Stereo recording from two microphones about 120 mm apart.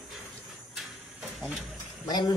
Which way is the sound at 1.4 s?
Centre (ahead or behind).